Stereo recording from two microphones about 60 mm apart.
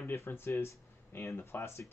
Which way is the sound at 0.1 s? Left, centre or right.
Left.